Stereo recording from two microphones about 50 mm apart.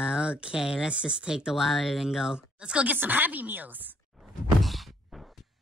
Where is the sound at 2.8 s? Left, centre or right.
Right.